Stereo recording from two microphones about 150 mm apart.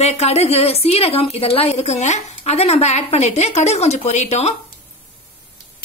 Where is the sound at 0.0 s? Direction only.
45° left (ahead or behind).